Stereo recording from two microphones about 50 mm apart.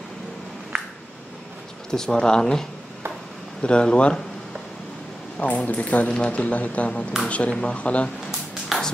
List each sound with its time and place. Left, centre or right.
1.9 s speech: centre
3.6 s speech: left
5.4 s speech: left
8.3 s a sound: centre